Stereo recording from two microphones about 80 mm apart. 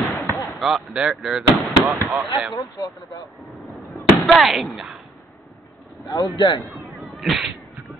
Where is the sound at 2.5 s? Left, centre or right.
Left.